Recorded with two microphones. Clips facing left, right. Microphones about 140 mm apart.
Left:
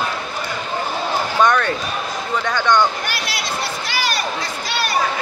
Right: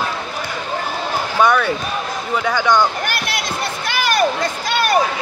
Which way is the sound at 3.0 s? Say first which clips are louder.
Right 2 dB; 50° right (ahead or behind).